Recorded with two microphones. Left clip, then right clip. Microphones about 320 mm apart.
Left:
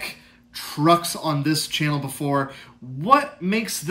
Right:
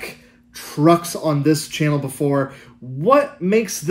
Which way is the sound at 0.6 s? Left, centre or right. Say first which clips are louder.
Right 3 dB; centre.